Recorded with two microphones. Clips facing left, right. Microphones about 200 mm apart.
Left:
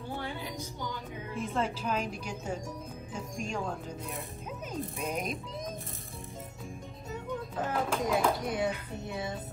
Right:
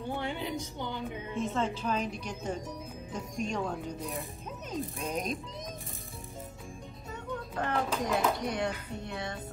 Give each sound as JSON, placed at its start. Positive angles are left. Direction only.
{"t": 0.7, "sound": "a woman's voice", "side_deg": -25}
{"t": 1.5, "sound": "a woman's voice", "side_deg": 10}
{"t": 7.3, "sound": "speech", "side_deg": 5}